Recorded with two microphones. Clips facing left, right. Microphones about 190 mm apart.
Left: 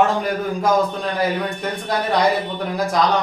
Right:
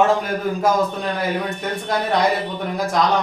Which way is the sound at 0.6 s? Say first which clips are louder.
Left 1 dB; centre (ahead or behind).